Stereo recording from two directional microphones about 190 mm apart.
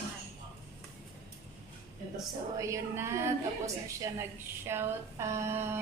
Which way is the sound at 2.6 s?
15° right (ahead or behind).